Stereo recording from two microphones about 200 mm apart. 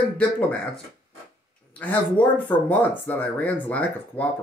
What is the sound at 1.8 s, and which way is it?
Speech, 10° left (ahead or behind).